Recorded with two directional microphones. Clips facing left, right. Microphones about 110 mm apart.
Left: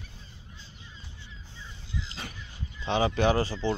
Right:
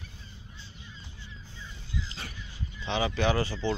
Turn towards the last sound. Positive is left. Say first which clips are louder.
# left 2 dB
turn(degrees=35)  # may be behind; listen again after turning